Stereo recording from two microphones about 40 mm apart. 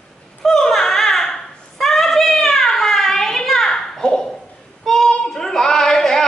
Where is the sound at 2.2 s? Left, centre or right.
Centre.